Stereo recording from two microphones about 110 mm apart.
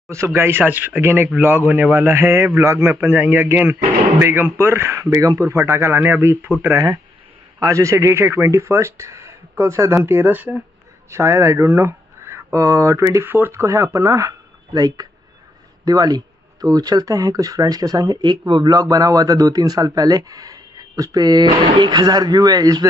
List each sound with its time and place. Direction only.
0.1 s a man's voice: 25° right (ahead or behind)
7.6 s a man's voice: 30° right (ahead or behind)